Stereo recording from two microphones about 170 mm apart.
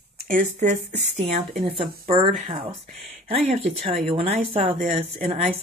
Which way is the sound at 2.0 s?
35° right (ahead or behind).